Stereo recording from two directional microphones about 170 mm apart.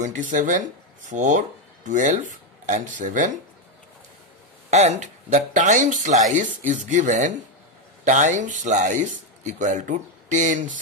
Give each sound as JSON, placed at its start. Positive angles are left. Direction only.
{"t": 0.0, "sound": "a man's voice", "side_deg": -50}
{"t": 4.6, "sound": "a man's voice", "side_deg": -40}